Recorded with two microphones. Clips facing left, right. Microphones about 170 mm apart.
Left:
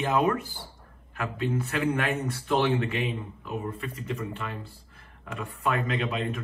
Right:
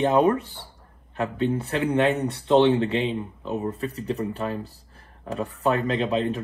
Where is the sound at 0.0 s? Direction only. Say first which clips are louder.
Right 5 dB; 30° right (ahead or behind).